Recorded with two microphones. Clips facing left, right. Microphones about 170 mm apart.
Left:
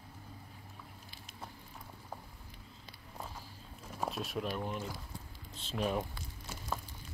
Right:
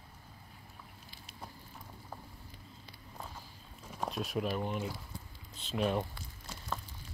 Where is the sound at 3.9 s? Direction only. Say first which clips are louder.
Right 2 dB; 5° left (ahead or behind).